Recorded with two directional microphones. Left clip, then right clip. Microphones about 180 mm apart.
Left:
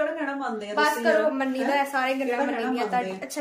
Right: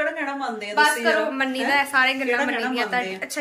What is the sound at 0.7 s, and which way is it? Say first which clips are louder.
A woman's voice: right 3 dB; 10° left (ahead or behind).